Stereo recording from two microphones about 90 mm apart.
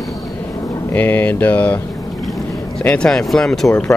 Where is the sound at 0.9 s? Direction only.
20° left (ahead or behind).